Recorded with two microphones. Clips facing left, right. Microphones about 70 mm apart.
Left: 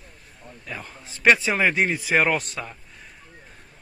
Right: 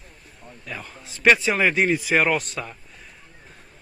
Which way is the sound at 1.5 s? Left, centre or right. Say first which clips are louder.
Right 2 dB; left.